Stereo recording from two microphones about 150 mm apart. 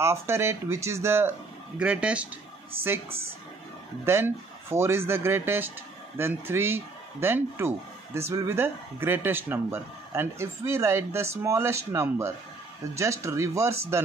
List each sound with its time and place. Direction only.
0.0 s speech: 15° right (ahead or behind)
4.0 s speech: 15° right (ahead or behind)